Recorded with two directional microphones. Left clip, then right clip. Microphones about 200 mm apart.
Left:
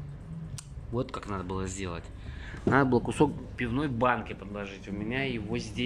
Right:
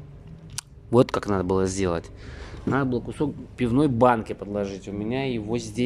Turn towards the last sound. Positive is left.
turn(degrees=-20)  # may be behind; listen again after turning